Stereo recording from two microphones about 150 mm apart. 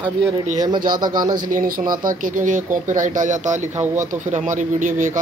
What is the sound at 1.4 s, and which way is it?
Speech, 65° right (ahead or behind).